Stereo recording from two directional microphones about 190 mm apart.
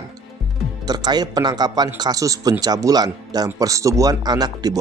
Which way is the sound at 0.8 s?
20° right (ahead or behind).